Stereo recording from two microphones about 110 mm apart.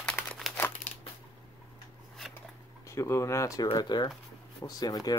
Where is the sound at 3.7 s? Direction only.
40° left (ahead or behind).